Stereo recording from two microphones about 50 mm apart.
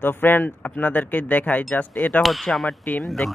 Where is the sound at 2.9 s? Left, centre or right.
Left.